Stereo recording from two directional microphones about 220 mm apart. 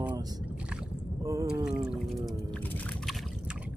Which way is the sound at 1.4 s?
5° right (ahead or behind).